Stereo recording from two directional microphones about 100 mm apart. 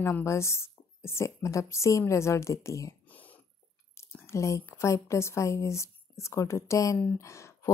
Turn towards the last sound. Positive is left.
turn(degrees=30)  # may be behind; listen again after turning